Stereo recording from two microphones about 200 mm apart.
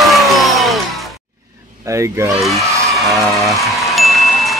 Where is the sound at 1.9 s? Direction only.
15° right (ahead or behind).